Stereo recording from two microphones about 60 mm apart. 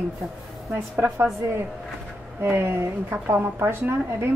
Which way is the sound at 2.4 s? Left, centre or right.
Right.